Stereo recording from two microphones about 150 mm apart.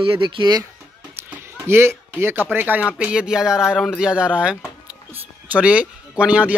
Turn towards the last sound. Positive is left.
turn(degrees=-10)  # may be behind; listen again after turning